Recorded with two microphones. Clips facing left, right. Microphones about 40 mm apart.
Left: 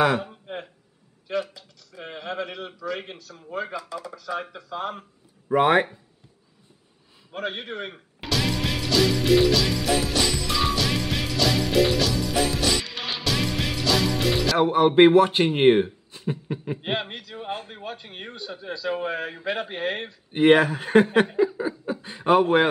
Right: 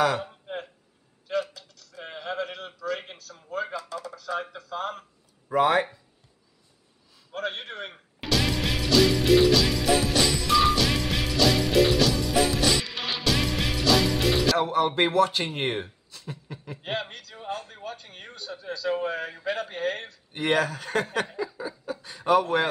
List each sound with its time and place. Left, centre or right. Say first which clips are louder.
0.2 s a sound: left 1 dB; centre
3.6 s speech: left 1 dB; centre
5.5 s speech: left 3 dB; left
7.3 s music: left 2 dB; centre
14.6 s speech: left 7 dB; left